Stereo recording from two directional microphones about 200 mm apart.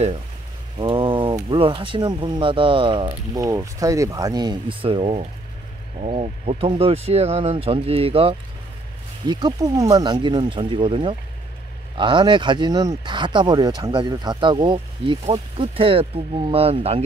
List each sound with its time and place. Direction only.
0.7 s speech: 25° right (ahead or behind)